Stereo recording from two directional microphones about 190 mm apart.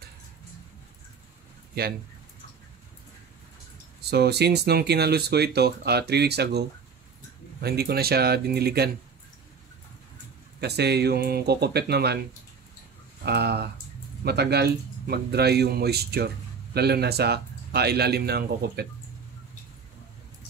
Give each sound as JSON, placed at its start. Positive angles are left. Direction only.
{"t": 4.0, "sound": "speech", "side_deg": -60}
{"t": 7.6, "sound": "speech", "side_deg": -55}
{"t": 10.6, "sound": "speech", "side_deg": -60}
{"t": 13.2, "sound": "speech", "side_deg": -60}